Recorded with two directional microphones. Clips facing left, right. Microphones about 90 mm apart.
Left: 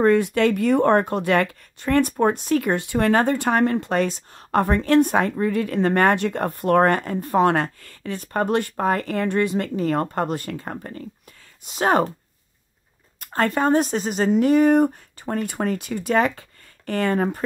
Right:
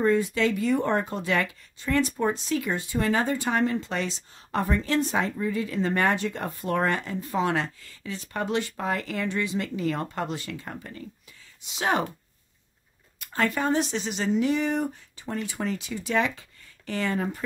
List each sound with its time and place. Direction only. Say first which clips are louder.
0.0 s speech: left 5 dB; 65° left (ahead or behind); by 12.1 s 45° left (ahead or behind)
13.2 s speech: left 5 dB; 45° left (ahead or behind)